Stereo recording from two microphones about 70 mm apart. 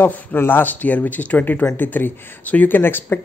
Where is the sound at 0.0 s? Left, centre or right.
Left.